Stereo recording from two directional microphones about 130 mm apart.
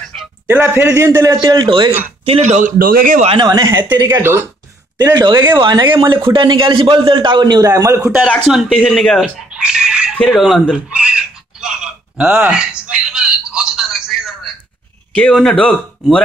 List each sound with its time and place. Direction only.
0.1 s a sound: 5° left (ahead or behind)
0.5 s a man's voice: 15° right (ahead or behind)
1.3 s a man's voice: 35° right (ahead or behind)
2.4 s a man's voice: 75° right (ahead or behind); by 3.3 s 90° right
3.4 s a man's voice: 30° right (ahead or behind)
4.1 s a man's voice: 20° right (ahead or behind)
5.0 s a man's voice: 30° right (ahead or behind)
8.5 s speech: centre (ahead or behind)
9.5 s a sound: 5° right (ahead or behind)
10.3 s speech: centre (ahead or behind)
15.1 s speech: 5° left (ahead or behind)